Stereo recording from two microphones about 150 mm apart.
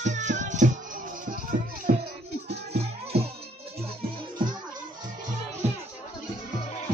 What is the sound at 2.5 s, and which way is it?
Music, 90° right.